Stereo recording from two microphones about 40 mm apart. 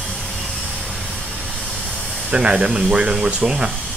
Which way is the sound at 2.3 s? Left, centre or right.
Right.